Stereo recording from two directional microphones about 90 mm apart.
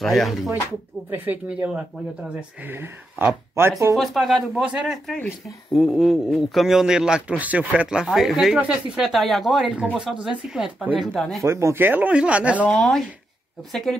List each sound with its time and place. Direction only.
0.0 s a man's voice: centre (ahead or behind)
1.1 s speech: 20° right (ahead or behind)
2.6 s speech: 25° right (ahead or behind)
3.9 s a man's voice: centre (ahead or behind)
9.0 s a man's voice: centre (ahead or behind)
11.4 s speech: 30° right (ahead or behind); by 12.6 s 15° right (ahead or behind)
12.6 s a man's voice: 10° left (ahead or behind)